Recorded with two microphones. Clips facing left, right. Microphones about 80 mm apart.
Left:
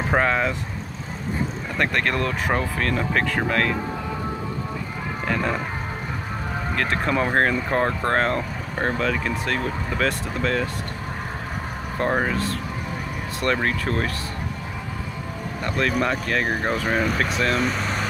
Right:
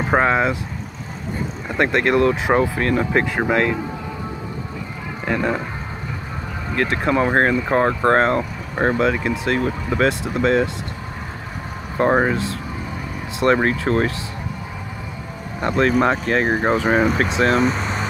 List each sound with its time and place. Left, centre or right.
0.1 s speech: centre
1.7 s speech: centre
5.2 s speech: centre
6.7 s speech: centre
12.0 s speech: right
15.6 s speech: right
17.7 s vehicle: centre